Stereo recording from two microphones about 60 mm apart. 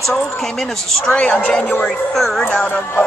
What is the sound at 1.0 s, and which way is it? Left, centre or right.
Speech, left.